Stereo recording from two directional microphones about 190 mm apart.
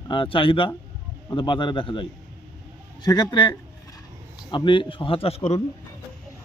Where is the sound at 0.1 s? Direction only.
25° left (ahead or behind).